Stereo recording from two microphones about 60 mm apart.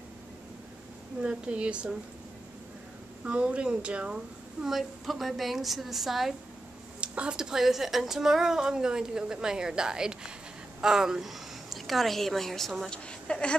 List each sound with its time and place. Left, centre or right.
1.2 s a woman's voice: centre
3.3 s speech: centre
4.6 s a woman's voice: centre
7.0 s a woman's voice: centre
12.9 s a woman's voice: centre